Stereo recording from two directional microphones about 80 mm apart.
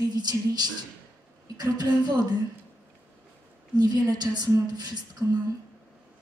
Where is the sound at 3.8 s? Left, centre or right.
Right.